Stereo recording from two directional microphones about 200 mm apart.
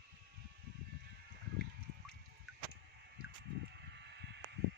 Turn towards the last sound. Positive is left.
turn(degrees=-60)  # may be behind; listen again after turning